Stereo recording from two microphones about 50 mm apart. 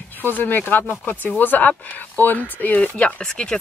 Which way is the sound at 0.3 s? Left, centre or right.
Left.